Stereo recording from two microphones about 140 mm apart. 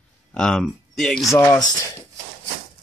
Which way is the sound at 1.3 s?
25° left (ahead or behind).